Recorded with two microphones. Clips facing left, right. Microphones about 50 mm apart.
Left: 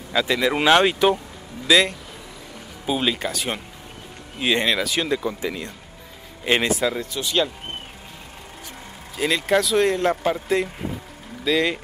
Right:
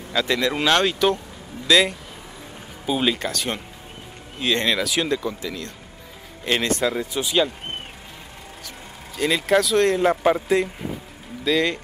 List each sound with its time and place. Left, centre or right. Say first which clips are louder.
0.1 s speech: left 1 dB; centre
1.7 s speech: even; centre
5.4 s speech: left 3 dB; centre
6.7 s speech: even; centre
9.1 s speech: right 1 dB; centre
9.9 s a man's voice: right 3 dB; centre
11.4 s speech: even; centre